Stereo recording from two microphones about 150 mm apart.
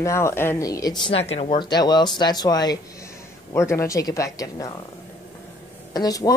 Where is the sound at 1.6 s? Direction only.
30° left (ahead or behind).